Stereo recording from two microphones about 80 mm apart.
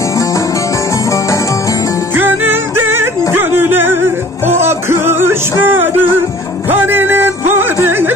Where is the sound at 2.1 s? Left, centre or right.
Right.